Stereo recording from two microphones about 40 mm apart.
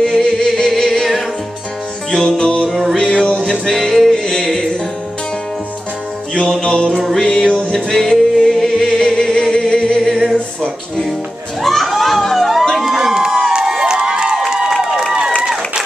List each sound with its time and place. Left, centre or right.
0.0 s singing: centre
2.0 s music: left
6.6 s music: left
7.2 s music: centre
7.4 s music: left
7.7 s music: centre
11.6 s crowd: centre
14.8 s a sound: centre
15.4 s a sound: centre